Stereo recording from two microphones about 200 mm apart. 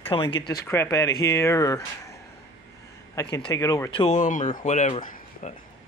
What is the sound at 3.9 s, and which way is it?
Speech, 35° left (ahead or behind).